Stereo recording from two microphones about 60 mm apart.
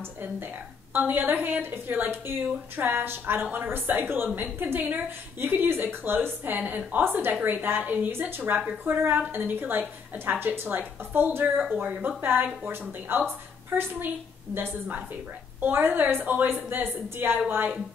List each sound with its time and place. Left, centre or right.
0.9 s a woman's voice: right
12.2 s a woman's voice: right